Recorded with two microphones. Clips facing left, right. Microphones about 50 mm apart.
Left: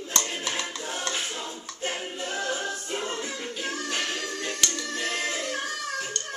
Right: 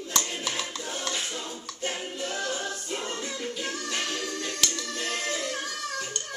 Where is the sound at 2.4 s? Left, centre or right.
Left.